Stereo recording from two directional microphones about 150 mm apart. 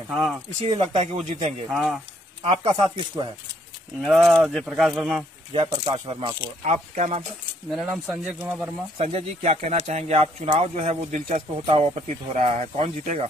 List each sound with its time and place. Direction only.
0.1 s speech: centre (ahead or behind)
0.6 s speech: 40° right (ahead or behind)
1.7 s speech: centre (ahead or behind)
2.4 s speech: 35° right (ahead or behind)
4.0 s speech: centre (ahead or behind)
5.5 s speech: 35° right (ahead or behind)
6.6 s speech: 50° right (ahead or behind)
7.7 s speech: 5° right (ahead or behind)
8.9 s speech: 45° right (ahead or behind)
11.6 s speech: 40° right (ahead or behind)
12.1 s speech: 55° right (ahead or behind)